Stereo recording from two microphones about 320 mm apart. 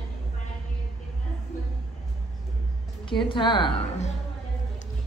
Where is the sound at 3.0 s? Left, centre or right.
Centre.